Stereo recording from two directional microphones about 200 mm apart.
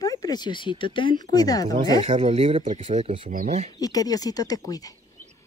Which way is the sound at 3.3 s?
40° right (ahead or behind).